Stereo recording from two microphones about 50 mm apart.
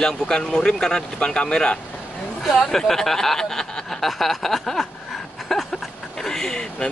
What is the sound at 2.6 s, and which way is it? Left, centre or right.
Speech, centre.